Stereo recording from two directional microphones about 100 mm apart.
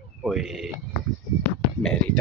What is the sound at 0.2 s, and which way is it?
Speech, 5° right (ahead or behind).